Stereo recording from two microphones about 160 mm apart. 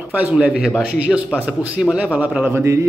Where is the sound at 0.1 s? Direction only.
10° right (ahead or behind).